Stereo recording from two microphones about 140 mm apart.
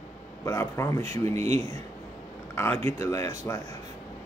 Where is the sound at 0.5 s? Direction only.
20° left (ahead or behind).